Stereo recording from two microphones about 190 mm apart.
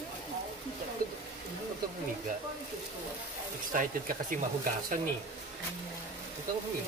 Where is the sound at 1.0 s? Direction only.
45° right (ahead or behind).